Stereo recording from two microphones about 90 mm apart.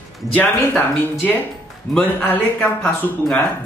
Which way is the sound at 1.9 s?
15° left (ahead or behind).